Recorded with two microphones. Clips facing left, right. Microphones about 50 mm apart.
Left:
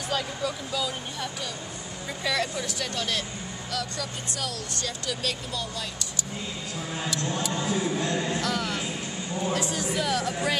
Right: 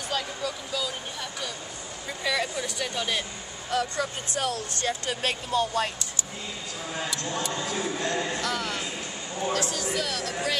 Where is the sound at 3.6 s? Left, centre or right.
Right.